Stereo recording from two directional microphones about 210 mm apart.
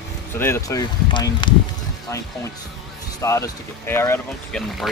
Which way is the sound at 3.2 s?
15° left (ahead or behind).